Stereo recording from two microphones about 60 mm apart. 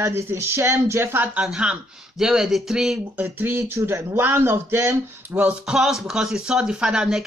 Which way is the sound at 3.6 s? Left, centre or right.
Right.